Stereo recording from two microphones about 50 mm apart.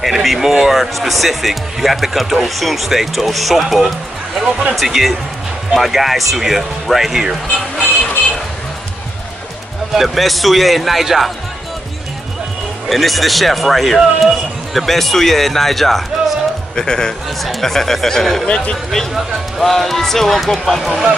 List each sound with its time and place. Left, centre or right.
0.0 s speech: centre
9.9 s speech: centre
12.8 s speech: centre
16.7 s speech: centre
17.4 s speech: centre